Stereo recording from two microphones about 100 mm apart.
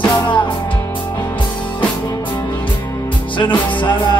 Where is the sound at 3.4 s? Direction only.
55° left (ahead or behind).